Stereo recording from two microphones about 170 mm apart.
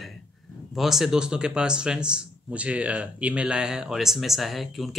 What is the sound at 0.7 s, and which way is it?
Speech, centre (ahead or behind).